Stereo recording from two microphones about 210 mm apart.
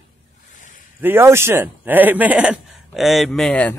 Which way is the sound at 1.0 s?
10° right (ahead or behind).